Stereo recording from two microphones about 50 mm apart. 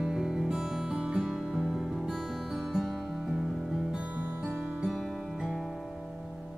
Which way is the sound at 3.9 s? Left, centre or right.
Right.